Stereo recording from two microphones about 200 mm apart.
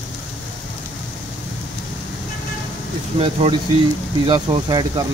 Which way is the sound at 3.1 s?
30° right (ahead or behind).